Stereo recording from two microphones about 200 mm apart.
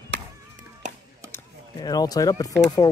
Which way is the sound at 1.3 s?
20° left (ahead or behind).